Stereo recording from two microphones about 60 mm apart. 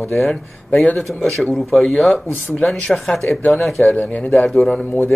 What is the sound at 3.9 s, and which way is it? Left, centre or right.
Speech, left.